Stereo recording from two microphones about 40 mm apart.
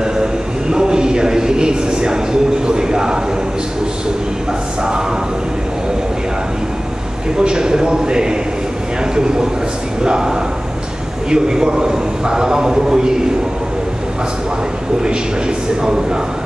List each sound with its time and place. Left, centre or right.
0.0 s a sound: centre
7.3 s a man's voice: centre
10.0 s a man's voice: centre